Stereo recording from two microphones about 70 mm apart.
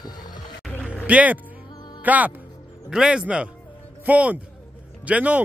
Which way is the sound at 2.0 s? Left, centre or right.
Right.